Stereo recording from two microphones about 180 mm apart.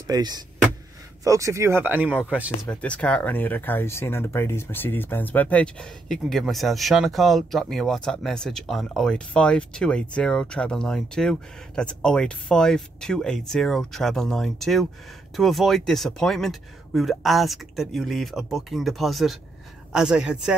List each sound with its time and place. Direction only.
0.0 s speech: 20° right (ahead or behind); by 2.7 s 5° right (ahead or behind)
2.7 s speech: 5° left (ahead or behind)